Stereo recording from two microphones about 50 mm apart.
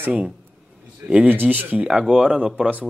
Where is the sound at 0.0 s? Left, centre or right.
Right.